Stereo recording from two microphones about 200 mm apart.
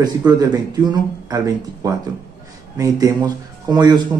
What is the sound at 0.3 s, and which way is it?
A man's voice, 20° right (ahead or behind).